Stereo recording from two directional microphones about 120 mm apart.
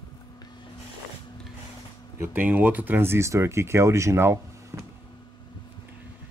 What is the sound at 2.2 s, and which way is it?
Speech, 15° right (ahead or behind).